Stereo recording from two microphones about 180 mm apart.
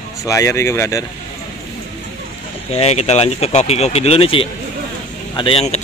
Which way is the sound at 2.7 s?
35° left (ahead or behind).